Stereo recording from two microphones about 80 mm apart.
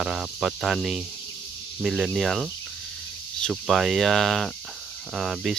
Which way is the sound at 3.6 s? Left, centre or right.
Centre.